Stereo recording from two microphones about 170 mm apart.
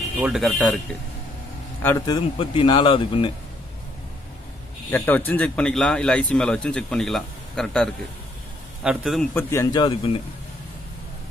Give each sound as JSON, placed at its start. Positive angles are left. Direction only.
{"t": 0.2, "sound": "speech", "side_deg": 0}
{"t": 1.8, "sound": "a man's voice", "side_deg": 10}
{"t": 2.0, "sound": "a man's voice", "side_deg": 30}
{"t": 4.9, "sound": "speech", "side_deg": 10}
{"t": 9.3, "sound": "a man's voice", "side_deg": 15}